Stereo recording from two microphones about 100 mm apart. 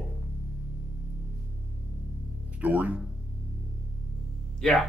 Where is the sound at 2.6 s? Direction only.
15° right (ahead or behind).